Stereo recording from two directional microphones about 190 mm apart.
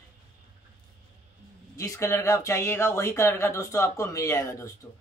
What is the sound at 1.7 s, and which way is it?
Speech, 15° left (ahead or behind).